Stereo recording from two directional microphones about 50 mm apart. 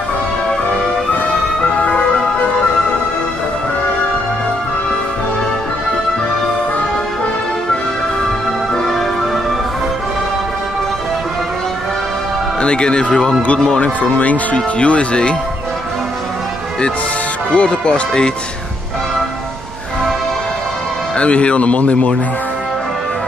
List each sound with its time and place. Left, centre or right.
1.1 s music: left
12.6 s speech: centre
14.0 s speech: left
17.5 s speech: left
21.2 s speech: left